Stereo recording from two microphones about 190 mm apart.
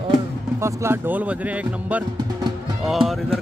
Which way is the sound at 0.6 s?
15° right (ahead or behind).